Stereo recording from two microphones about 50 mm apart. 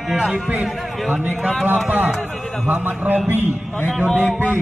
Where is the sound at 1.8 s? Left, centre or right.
Right.